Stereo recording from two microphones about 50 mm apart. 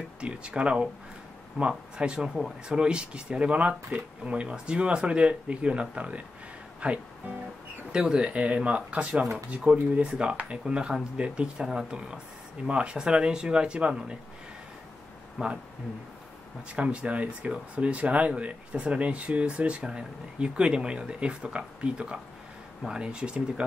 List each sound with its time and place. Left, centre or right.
0.2 s speech: right
15.4 s speech: centre
16.7 s speech: right